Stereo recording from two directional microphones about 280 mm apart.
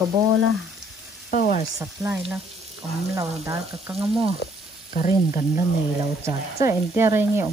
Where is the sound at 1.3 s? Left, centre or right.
Left.